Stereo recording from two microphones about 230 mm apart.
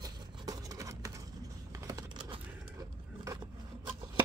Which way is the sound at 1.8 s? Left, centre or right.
Centre.